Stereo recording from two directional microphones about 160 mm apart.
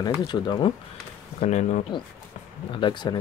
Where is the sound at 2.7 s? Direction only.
30° left (ahead or behind).